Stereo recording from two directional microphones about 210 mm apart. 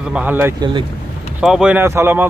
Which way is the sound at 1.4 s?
5° right (ahead or behind).